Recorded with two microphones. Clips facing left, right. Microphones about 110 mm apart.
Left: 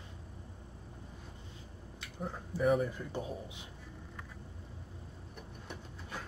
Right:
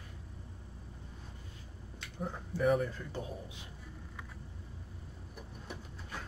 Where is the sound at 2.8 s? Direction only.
15° left (ahead or behind).